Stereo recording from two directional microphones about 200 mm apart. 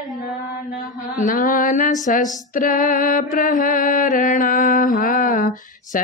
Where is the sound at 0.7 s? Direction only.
40° left (ahead or behind).